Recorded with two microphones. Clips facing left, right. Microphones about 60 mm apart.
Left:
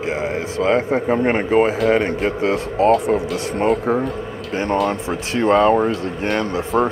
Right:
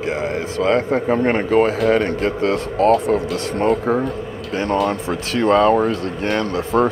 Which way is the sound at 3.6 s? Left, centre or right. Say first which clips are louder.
Even; centre.